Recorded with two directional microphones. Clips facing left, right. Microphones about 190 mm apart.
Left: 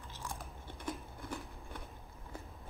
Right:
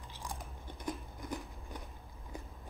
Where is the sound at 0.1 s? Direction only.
15° right (ahead or behind).